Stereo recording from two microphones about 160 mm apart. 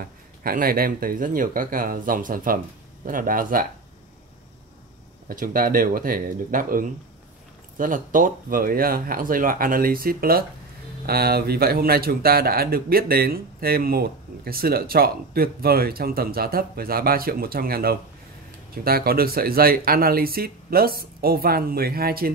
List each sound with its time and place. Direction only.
0.0 s speech: 65° right (ahead or behind)
5.3 s a man's voice: 60° right (ahead or behind)